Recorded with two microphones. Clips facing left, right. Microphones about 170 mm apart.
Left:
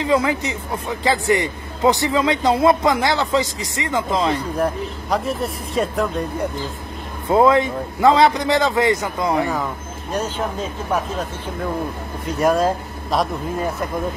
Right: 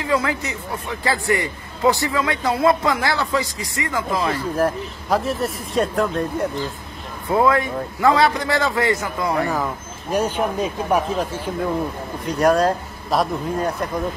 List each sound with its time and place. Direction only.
0.0 s speech: 20° left (ahead or behind)
4.6 s speech: centre (ahead or behind)
7.2 s speech: 25° left (ahead or behind)
10.1 s speech: 15° right (ahead or behind)
12.3 s speech: centre (ahead or behind)